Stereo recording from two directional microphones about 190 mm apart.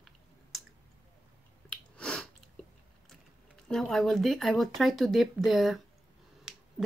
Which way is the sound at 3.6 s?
Centre (ahead or behind).